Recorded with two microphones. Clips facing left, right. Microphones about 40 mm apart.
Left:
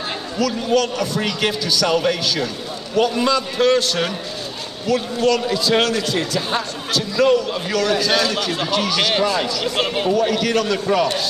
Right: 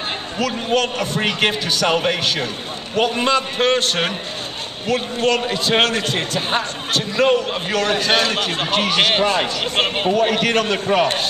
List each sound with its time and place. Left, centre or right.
0.4 s speech: right